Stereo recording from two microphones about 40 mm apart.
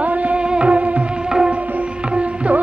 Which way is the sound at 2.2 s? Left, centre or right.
Right.